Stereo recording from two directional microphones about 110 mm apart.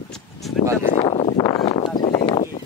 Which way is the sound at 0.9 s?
60° left (ahead or behind).